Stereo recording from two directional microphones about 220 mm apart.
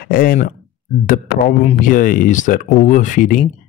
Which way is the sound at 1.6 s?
35° left (ahead or behind).